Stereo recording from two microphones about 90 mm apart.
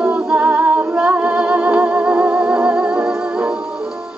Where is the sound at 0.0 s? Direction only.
15° right (ahead or behind).